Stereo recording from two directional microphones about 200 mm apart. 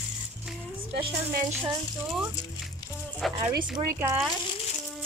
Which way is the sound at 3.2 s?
Centre (ahead or behind).